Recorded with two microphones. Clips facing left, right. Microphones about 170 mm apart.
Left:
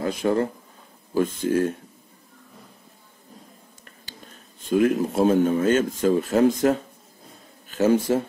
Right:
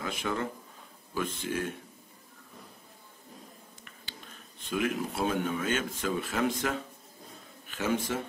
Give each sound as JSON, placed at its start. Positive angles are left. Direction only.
{"t": 0.0, "sound": "a man's voice", "side_deg": 40}
{"t": 4.6, "sound": "a man's voice", "side_deg": 40}